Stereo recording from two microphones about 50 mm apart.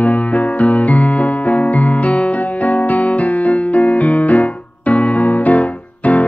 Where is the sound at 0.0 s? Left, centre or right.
Left.